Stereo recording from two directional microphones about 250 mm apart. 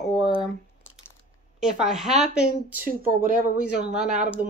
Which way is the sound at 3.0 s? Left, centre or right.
Right.